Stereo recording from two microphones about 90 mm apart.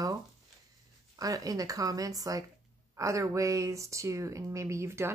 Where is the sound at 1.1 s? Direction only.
40° right (ahead or behind).